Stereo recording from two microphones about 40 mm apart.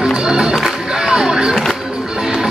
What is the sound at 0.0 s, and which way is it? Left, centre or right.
Music, centre.